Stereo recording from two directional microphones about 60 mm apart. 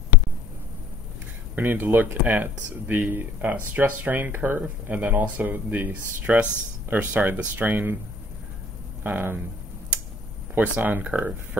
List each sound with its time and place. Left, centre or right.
1.5 s speech: right
9.0 s speech: right
10.6 s speech: right